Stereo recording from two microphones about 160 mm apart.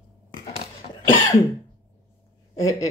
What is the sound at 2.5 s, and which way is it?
Speech, 20° left (ahead or behind).